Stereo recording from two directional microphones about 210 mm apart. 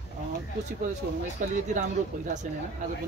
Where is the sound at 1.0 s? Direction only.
45° right (ahead or behind).